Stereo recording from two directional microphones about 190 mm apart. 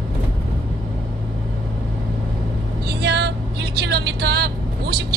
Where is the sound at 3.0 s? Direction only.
60° right (ahead or behind).